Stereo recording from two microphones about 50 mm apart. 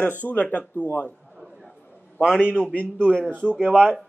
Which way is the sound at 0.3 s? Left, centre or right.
Left.